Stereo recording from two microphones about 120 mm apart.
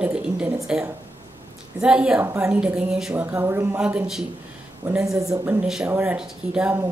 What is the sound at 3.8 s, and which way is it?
A woman's voice, 10° right (ahead or behind).